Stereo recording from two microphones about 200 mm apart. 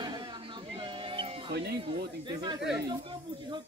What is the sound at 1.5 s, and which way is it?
Speech, 55° right (ahead or behind).